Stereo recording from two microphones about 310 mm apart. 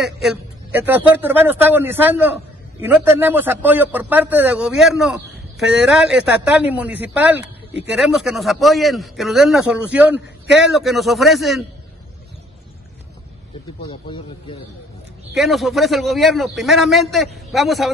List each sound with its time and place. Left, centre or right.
0.0 s a man's voice: centre
13.8 s speech: centre
15.3 s a man's voice: centre